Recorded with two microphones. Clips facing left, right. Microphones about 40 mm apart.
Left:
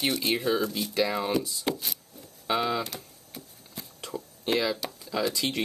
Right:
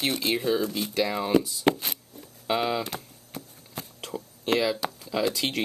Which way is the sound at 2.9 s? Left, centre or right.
Right.